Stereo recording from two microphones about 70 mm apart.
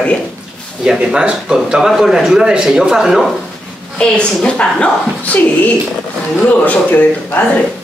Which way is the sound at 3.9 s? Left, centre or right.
Centre.